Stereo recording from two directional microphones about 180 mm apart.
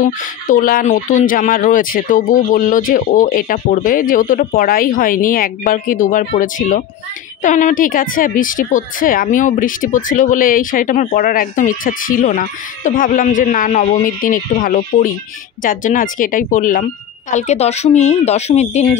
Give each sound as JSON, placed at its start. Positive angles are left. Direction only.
{"t": 0.0, "sound": "speech", "side_deg": 50}